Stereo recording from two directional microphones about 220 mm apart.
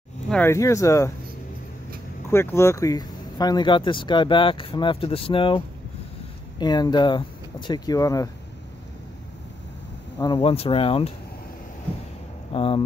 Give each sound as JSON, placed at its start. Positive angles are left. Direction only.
{"t": 0.3, "sound": "speech", "side_deg": 10}
{"t": 2.3, "sound": "speech", "side_deg": 10}
{"t": 6.6, "sound": "speech", "side_deg": 20}
{"t": 10.1, "sound": "speech", "side_deg": 20}
{"t": 12.5, "sound": "speech", "side_deg": 25}